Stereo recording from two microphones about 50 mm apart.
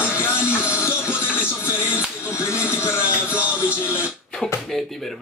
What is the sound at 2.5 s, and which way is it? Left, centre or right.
Music, left.